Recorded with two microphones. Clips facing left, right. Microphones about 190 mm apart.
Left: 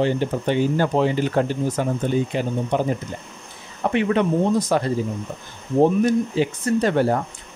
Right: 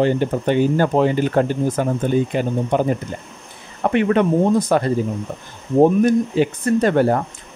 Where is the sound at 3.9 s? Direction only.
55° right (ahead or behind).